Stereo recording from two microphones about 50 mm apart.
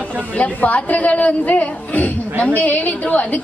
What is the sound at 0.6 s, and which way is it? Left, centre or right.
A woman's voice, left.